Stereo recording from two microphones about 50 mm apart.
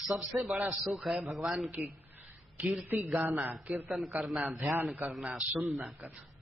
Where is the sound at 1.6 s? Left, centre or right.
Right.